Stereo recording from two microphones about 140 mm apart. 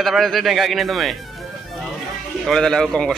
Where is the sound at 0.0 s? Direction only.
Centre (ahead or behind).